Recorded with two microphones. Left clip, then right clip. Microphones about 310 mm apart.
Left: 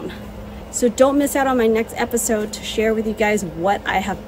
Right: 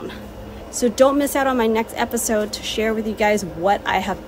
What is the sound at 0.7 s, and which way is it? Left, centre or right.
A woman's voice, centre.